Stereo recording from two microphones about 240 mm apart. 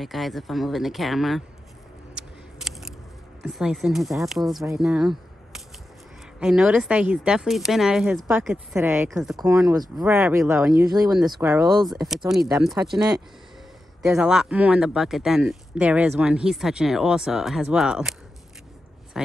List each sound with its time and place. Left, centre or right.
0.0 s speech: centre
2.1 s a sound: centre
3.4 s speech: centre
4.7 s a sound: centre
6.4 s speech: centre
10.9 s speech: centre
11.9 s speech: centre
19.1 s speech: centre